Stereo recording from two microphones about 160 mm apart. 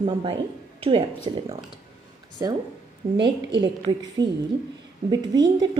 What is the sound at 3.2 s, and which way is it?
A woman's voice, 30° right (ahead or behind).